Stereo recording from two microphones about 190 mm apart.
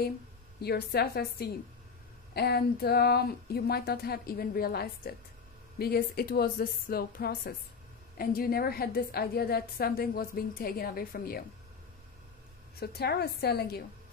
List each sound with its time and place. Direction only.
0.6 s a woman's voice: 55° left (ahead or behind)
12.8 s speech: 55° left (ahead or behind)